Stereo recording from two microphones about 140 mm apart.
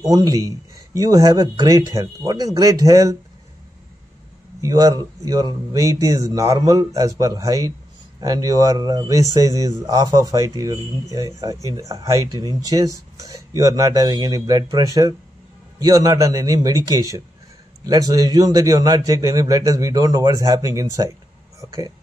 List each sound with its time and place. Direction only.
0.0 s speech: 25° right (ahead or behind)
4.6 s speech: 25° right (ahead or behind)